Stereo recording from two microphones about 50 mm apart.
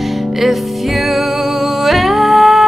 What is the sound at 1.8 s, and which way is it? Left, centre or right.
Music, centre.